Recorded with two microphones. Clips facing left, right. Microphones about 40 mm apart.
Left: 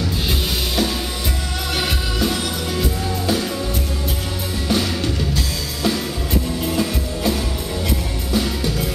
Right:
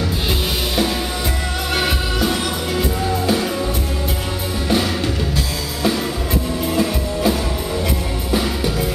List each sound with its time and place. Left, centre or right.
1.8 s music: centre
4.6 s music: centre
6.7 s music: centre